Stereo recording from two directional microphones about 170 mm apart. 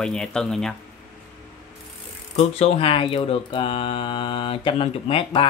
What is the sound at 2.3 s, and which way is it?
Speech, 35° left (ahead or behind).